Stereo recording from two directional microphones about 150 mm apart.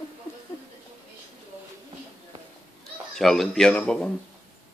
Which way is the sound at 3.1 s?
Centre (ahead or behind).